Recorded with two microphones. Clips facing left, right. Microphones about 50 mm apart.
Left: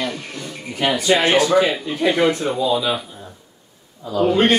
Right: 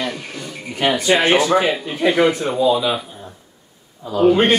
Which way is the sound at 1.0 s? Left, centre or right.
Right.